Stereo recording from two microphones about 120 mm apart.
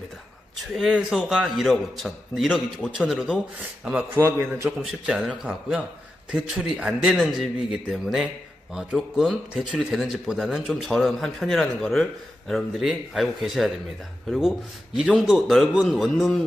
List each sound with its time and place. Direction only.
0.7 s a man's voice: centre (ahead or behind)
4.1 s a man's voice: 25° right (ahead or behind)
4.7 s a man's voice: 5° right (ahead or behind)
15.0 s a man's voice: 5° right (ahead or behind)